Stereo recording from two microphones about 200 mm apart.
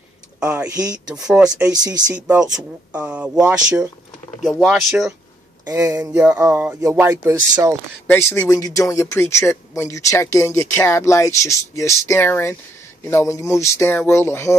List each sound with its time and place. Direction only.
0.4 s speech: 5° right (ahead or behind)
0.7 s speech: 20° right (ahead or behind)
1.2 s speech: 5° right (ahead or behind)
1.7 s speech: 20° right (ahead or behind); by 4.8 s centre (ahead or behind)
5.7 s speech: 15° right (ahead or behind)
5.9 s speech: 5° right (ahead or behind)
8.1 s speech: 10° left (ahead or behind)